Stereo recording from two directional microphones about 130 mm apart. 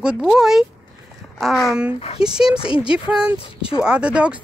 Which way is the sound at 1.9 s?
50° left (ahead or behind).